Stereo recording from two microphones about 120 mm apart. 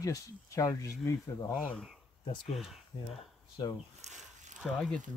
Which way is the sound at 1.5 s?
5° left (ahead or behind).